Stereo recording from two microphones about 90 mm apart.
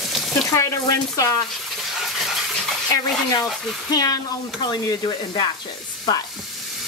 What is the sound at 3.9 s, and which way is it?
Speech, 45° left (ahead or behind).